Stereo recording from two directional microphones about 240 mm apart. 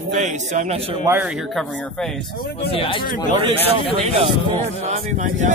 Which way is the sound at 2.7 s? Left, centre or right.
Left.